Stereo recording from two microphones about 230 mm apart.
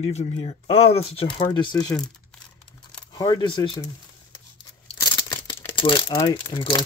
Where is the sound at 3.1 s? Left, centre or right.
Centre.